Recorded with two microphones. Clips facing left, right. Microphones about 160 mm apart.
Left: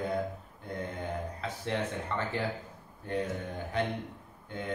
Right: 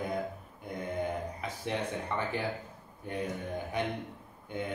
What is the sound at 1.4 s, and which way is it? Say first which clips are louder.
Mantra: left 1 dB; 15° right (ahead or behind).